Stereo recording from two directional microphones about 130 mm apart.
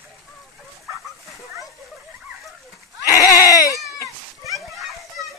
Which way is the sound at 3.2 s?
25° left (ahead or behind).